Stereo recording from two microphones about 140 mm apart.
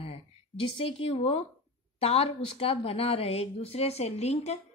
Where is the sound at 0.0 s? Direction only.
40° left (ahead or behind).